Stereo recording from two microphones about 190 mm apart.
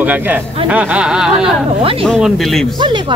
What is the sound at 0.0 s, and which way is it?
Speech, 10° right (ahead or behind).